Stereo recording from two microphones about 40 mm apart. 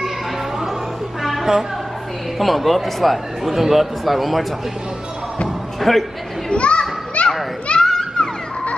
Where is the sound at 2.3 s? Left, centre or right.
Centre.